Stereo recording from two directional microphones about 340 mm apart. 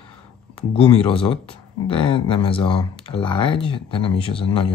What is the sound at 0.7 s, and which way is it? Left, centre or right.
Speech, centre.